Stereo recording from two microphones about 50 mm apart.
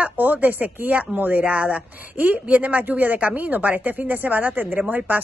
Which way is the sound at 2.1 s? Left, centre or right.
Right.